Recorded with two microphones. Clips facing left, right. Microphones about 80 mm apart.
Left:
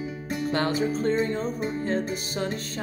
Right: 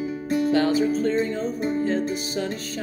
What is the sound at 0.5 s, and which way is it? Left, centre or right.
Music, left.